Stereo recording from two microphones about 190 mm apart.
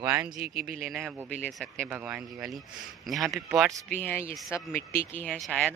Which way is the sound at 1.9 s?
5° right (ahead or behind).